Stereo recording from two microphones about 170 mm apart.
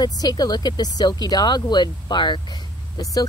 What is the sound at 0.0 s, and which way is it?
Speech, 25° left (ahead or behind).